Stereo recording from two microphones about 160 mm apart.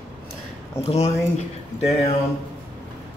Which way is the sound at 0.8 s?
40° left (ahead or behind).